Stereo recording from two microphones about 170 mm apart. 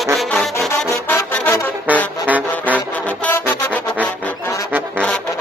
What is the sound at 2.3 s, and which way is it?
Music, 10° right (ahead or behind).